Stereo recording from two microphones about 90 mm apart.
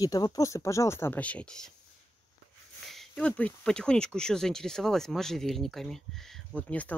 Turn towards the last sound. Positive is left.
turn(degrees=15)  # may be behind; listen again after turning